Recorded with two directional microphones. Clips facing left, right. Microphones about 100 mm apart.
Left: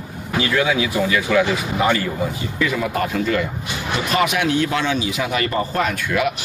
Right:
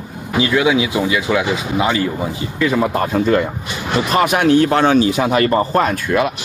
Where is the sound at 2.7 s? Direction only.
35° right (ahead or behind).